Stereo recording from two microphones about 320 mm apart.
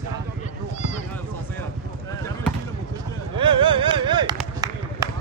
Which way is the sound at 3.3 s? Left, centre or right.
Centre.